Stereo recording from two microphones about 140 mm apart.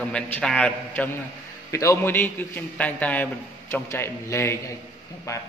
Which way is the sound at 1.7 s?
20° left (ahead or behind).